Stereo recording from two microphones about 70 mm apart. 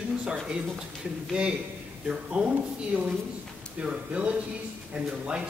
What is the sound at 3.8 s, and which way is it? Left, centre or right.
Speech, centre.